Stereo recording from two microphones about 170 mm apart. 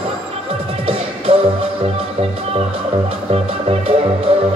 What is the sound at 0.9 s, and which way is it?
Music, 35° right (ahead or behind).